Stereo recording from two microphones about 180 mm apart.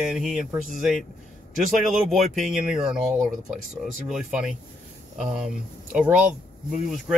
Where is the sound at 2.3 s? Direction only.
5° right (ahead or behind).